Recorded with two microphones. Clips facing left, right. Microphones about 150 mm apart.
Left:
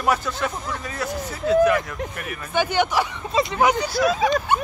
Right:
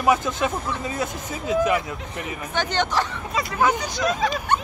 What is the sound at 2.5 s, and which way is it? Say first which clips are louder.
Speech: left 3 dB; 10° left (ahead or behind).